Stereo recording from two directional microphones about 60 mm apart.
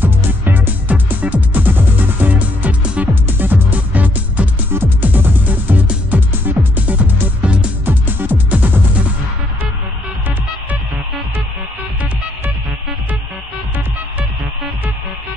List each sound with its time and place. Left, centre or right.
0.0 s music: right
3.3 s music: right; by 7.7 s centre
7.8 s music: right